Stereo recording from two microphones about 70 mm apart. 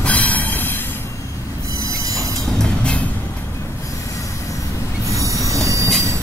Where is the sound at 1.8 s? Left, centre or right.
Right.